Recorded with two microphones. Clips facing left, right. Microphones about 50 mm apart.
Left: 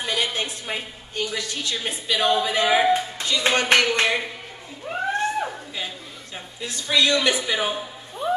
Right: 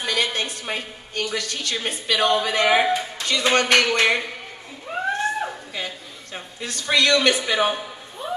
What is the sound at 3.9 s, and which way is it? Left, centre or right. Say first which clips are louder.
Speech: right 2 dB; right.